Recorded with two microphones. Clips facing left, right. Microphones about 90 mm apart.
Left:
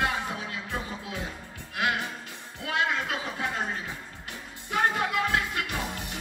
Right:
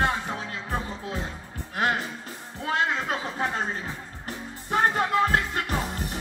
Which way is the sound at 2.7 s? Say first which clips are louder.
Right 2 dB; 35° right (ahead or behind).